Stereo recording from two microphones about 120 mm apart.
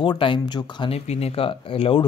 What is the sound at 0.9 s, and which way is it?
Speech, 60° left (ahead or behind).